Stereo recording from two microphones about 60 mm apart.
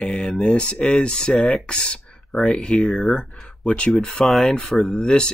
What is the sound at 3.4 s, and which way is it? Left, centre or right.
Speech, centre.